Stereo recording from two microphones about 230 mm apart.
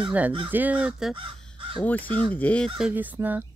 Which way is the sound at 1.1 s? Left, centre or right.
Right.